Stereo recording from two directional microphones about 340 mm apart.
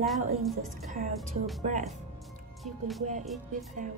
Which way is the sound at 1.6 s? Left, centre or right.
Right.